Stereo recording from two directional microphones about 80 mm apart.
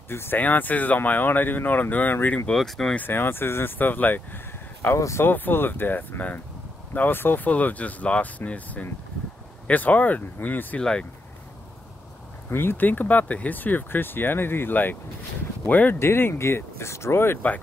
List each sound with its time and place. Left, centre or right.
0.1 s speech: left
2.5 s speech: centre
3.0 s speech: left
4.9 s speech: left
10.8 s speech: centre
12.4 s speech: left